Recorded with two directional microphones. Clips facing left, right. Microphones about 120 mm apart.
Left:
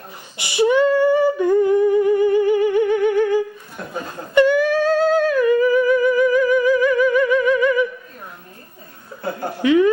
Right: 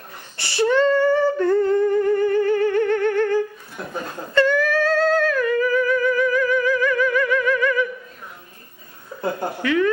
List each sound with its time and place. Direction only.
0.4 s humming: 15° left (ahead or behind)
4.3 s music: 15° left (ahead or behind)
9.6 s a sound: 20° left (ahead or behind)